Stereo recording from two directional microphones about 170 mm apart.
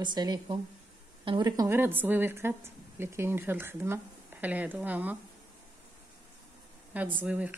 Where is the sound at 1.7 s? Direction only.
10° right (ahead or behind).